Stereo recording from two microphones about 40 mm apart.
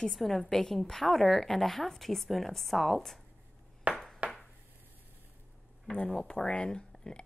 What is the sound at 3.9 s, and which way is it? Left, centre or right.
Ping, centre.